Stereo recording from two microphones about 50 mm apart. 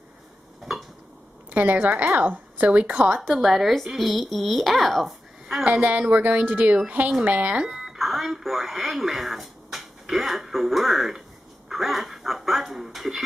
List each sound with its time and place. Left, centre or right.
1.5 s a woman's voice: right
3.2 s speech: centre
5.7 s a woman's voice: right
7.6 s speech: centre